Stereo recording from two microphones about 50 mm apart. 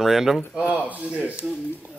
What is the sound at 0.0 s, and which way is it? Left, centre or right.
Speech, centre.